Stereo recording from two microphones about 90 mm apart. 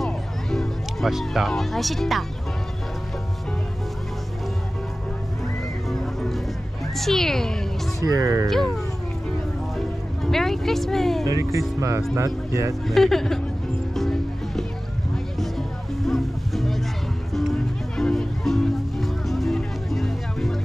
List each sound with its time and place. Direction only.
0.0 s music: 5° left (ahead or behind)
5.9 s music: centre (ahead or behind)
7.0 s speech: 5° left (ahead or behind)
8.0 s speech: 40° right (ahead or behind)
8.5 s speech: 5° left (ahead or behind)
11.2 s speech: 35° right (ahead or behind)
12.8 s speech: 5° left (ahead or behind)
13.9 s music: 5° left (ahead or behind)